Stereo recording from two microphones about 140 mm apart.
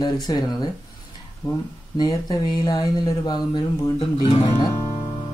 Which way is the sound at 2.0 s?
30° left (ahead or behind).